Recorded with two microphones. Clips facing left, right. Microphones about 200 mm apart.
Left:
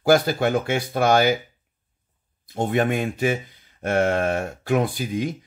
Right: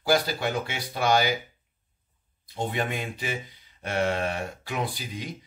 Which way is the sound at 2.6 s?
50° left (ahead or behind).